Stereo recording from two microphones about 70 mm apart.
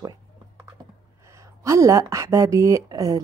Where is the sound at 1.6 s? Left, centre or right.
Right.